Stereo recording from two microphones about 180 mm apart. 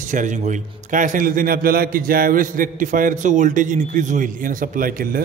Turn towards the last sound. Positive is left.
turn(degrees=-50)  # may be behind; listen again after turning